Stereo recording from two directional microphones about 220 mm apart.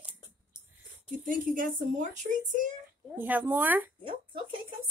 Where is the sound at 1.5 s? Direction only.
35° right (ahead or behind).